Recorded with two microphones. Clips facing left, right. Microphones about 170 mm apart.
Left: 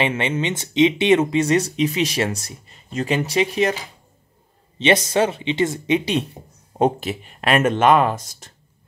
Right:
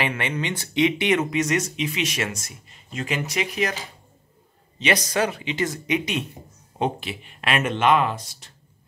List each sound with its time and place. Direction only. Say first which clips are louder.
0.0 s speech: left 5 dB; 25° left (ahead or behind)
4.7 s speech: left 5 dB; 25° left (ahead or behind)
6.8 s speech: left 7 dB; 40° left (ahead or behind)